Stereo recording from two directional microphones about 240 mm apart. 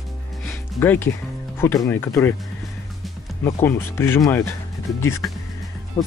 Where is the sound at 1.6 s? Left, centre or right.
Centre.